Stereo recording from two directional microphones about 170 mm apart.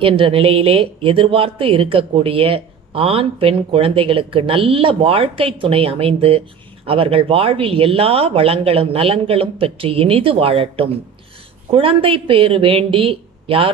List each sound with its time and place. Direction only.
0.0 s a woman's voice: 30° right (ahead or behind)